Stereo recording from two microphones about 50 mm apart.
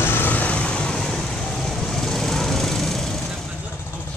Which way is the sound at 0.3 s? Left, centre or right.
Left.